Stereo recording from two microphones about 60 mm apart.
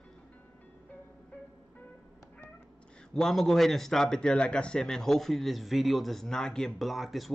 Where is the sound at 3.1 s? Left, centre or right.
Centre.